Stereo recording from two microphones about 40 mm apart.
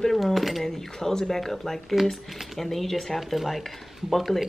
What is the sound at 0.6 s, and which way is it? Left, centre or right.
Speech, centre.